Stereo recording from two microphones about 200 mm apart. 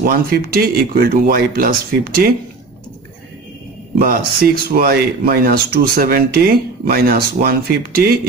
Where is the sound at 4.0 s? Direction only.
45° right (ahead or behind).